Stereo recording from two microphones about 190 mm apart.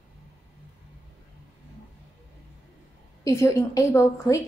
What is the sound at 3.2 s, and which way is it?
A woman's voice, 15° left (ahead or behind).